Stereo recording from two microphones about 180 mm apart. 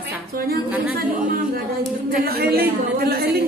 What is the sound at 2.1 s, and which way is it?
A woman's voice, 60° right (ahead or behind).